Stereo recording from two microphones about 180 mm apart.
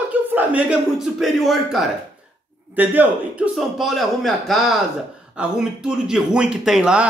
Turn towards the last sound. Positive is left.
turn(degrees=-5)  # may be behind; listen again after turning